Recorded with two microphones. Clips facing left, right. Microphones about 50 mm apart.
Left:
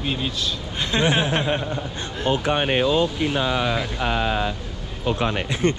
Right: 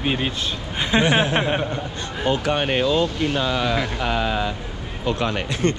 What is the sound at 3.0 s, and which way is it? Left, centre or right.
Speech, centre.